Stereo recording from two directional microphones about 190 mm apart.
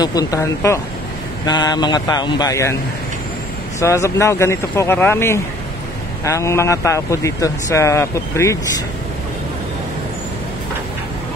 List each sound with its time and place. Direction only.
0.0 s speech: 20° left (ahead or behind)
3.8 s speech: 15° left (ahead or behind)